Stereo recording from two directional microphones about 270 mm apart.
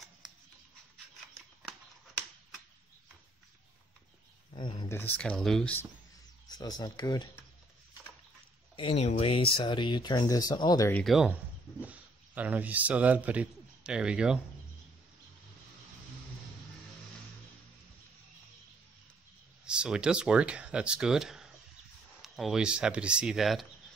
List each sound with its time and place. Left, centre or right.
1.3 s scissors: centre
4.6 s speech: centre
8.7 s speech: left; by 14.4 s centre
19.6 s speech: centre